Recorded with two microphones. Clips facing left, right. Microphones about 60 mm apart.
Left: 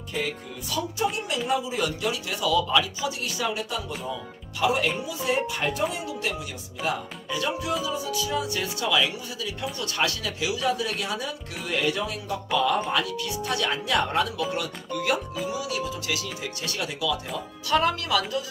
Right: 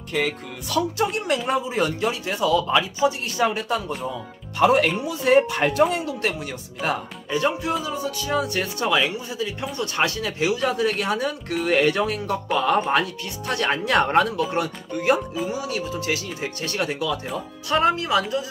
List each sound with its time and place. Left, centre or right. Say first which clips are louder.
0.1 s speech: right 5 dB; right
1.5 s speech: right 1 dB; right
3.3 s speech: right 6 dB; right
7.2 s speech: right 5 dB; right
17.6 s speech: right 3 dB; right